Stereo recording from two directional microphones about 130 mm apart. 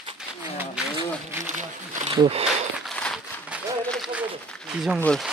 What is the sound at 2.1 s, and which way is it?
Speech, 45° right (ahead or behind).